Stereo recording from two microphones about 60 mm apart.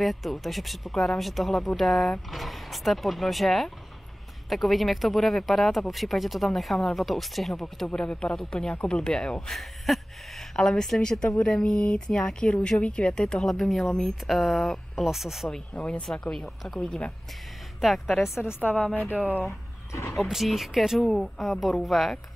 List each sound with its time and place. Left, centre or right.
0.0 s speech: centre
7.8 s speech: centre
9.9 s speech: centre
13.5 s speech: centre
15.7 s speech: left
16.1 s speech: centre
17.7 s speech: centre
18.6 s speech: left
19.1 s speech: right
19.4 s speech: left
20.2 s speech: centre